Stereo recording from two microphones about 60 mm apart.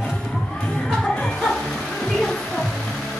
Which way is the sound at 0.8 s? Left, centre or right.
Centre.